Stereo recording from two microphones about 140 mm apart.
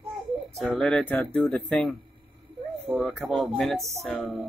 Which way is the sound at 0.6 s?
Centre (ahead or behind).